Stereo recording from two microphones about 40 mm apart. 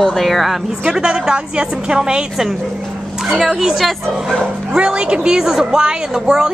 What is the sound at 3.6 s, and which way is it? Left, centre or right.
Speech, centre.